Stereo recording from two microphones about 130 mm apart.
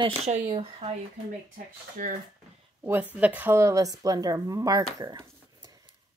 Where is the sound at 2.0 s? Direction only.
90° right.